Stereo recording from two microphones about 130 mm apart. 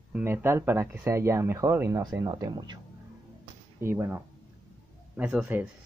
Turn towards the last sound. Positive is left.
turn(degrees=-10)  # may be behind; listen again after turning